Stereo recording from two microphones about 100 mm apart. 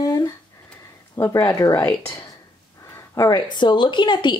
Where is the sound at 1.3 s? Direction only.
35° left (ahead or behind).